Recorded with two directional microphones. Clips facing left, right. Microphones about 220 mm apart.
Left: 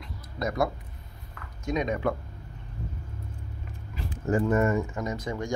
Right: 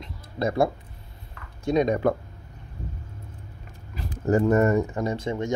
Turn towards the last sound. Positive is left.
turn(degrees=-25)  # may be behind; listen again after turning